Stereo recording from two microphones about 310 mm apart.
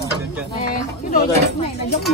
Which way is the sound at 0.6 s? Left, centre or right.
Left.